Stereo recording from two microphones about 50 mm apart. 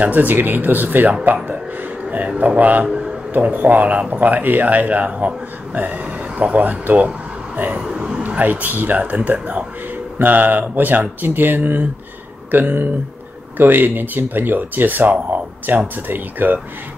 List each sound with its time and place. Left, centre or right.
0.0 s a man's voice: right
2.9 s a sound: centre
3.3 s speech: right
7.5 s vehicle: right
7.8 s a sound: right
8.4 s speech: right